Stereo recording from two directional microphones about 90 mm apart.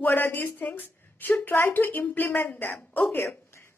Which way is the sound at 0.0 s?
20° left (ahead or behind).